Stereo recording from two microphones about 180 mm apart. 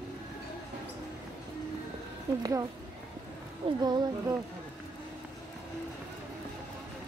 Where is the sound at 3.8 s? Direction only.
20° right (ahead or behind).